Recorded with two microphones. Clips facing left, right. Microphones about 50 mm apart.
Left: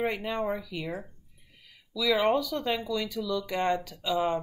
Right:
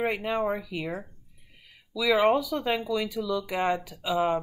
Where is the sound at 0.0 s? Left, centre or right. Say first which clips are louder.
Right 2 dB; centre.